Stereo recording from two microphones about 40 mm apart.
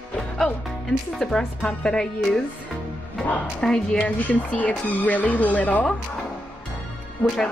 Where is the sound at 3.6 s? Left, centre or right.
Centre.